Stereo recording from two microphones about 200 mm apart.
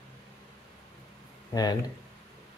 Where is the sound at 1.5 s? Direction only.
20° left (ahead or behind).